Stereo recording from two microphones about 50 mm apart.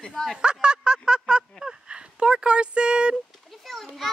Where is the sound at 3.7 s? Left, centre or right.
Centre.